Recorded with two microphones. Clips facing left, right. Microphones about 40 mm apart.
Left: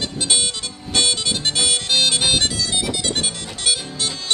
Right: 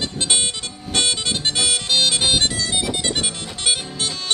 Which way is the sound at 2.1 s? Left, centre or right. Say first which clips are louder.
Even; right.